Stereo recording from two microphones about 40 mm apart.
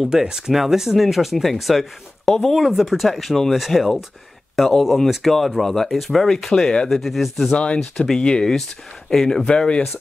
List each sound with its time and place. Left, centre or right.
0.0 s speech: centre
6.9 s speech: centre
7.5 s speech: left
9.6 s speech: left